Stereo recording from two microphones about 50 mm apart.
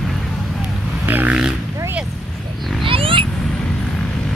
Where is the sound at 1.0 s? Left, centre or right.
Right.